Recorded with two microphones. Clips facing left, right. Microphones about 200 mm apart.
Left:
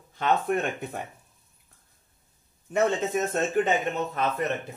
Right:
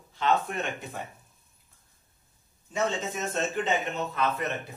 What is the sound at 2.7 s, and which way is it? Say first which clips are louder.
A man's voice: left 5 dB; 55° left (ahead or behind).